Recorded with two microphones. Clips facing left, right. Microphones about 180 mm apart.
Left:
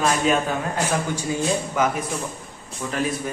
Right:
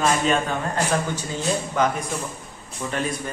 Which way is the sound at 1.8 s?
5° left (ahead or behind).